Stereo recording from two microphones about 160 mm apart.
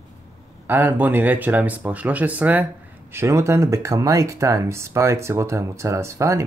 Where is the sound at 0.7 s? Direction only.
10° right (ahead or behind).